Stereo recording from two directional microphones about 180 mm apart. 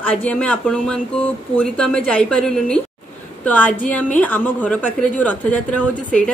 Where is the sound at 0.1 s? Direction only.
10° left (ahead or behind).